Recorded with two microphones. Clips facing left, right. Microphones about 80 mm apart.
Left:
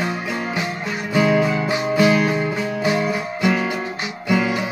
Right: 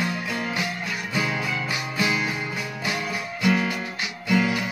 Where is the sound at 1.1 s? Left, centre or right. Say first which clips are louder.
Left 11 dB; left.